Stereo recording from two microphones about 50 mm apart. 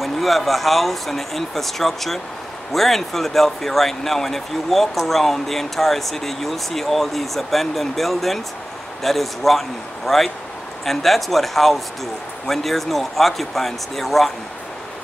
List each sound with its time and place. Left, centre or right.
0.0 s speech: centre